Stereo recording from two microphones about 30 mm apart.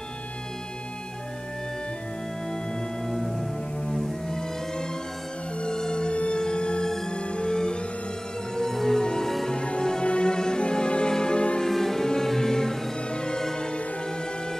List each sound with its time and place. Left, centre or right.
3.1 s music: centre
5.6 s music: left
8.5 s music: centre; by 11.6 s left
11.6 s music: centre
13.1 s music: left